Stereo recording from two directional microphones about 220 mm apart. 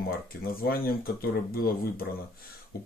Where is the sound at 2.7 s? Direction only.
45° left (ahead or behind).